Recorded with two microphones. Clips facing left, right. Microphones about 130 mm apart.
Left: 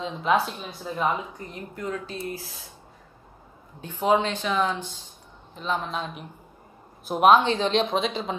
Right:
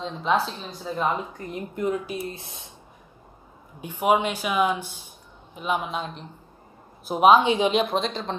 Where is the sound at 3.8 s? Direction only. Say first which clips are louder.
Right 1 dB; 15° right (ahead or behind).